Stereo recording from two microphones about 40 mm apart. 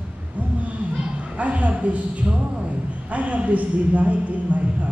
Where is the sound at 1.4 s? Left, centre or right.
Right.